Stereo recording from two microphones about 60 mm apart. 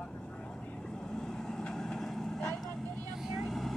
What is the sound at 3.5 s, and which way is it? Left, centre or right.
Vehicle, centre.